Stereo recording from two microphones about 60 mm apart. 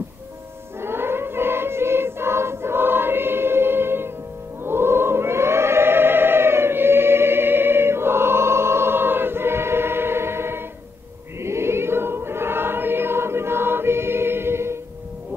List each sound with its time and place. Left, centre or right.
0.7 s choir: right